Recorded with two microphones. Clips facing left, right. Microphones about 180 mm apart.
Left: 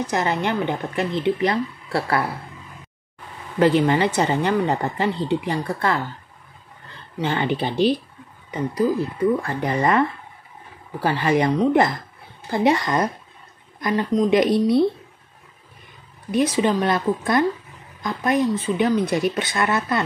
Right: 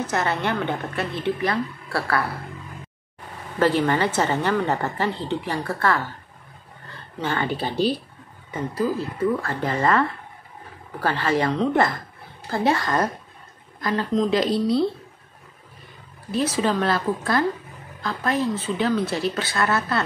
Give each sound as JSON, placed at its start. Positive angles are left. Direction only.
{"t": 0.0, "sound": "a woman's voice", "side_deg": 15}
{"t": 3.5, "sound": "a woman's voice", "side_deg": 15}
{"t": 7.2, "sound": "a woman's voice", "side_deg": 20}
{"t": 16.3, "sound": "a woman's voice", "side_deg": 15}